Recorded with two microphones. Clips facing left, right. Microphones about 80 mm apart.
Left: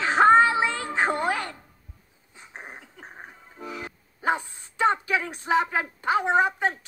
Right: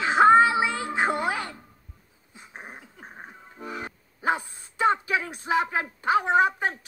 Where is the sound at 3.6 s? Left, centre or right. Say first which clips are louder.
Right 1 dB; right.